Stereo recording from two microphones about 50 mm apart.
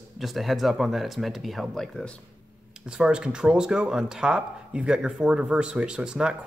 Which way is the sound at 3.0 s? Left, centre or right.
Centre.